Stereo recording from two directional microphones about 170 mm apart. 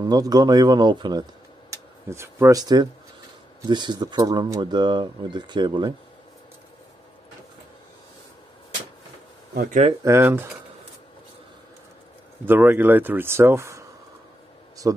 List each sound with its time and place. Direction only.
0.0 s speech: 20° right (ahead or behind)
1.7 s speech: 15° right (ahead or behind)
9.5 s speech: 65° right (ahead or behind)
10.0 s speech: 15° right (ahead or behind)
12.4 s speech: 10° right (ahead or behind)
14.8 s speech: 20° right (ahead or behind)